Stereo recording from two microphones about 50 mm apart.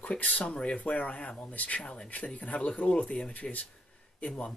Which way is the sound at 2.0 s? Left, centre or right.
Left.